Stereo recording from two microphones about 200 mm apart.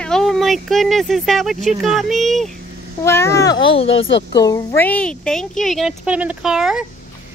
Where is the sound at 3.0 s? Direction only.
15° left (ahead or behind).